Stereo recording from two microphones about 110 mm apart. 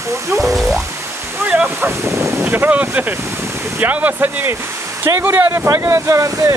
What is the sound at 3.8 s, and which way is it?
Speech, 15° right (ahead or behind).